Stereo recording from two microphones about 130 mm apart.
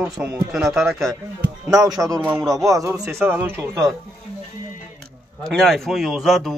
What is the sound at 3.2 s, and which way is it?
Speech, 15° right (ahead or behind).